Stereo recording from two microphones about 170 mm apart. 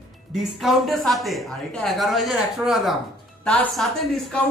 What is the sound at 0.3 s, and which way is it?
Speech, centre (ahead or behind).